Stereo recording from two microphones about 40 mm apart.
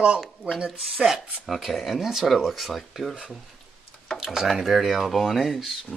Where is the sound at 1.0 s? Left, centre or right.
Centre.